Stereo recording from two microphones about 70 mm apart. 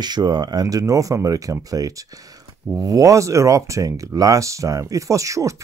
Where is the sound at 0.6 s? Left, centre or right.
Right.